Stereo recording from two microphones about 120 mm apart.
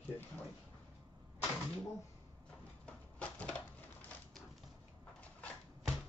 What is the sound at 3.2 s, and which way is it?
Crushing, 10° left (ahead or behind).